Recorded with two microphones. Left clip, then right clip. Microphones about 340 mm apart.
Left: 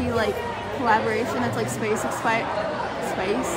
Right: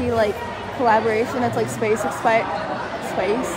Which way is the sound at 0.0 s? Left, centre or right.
Centre.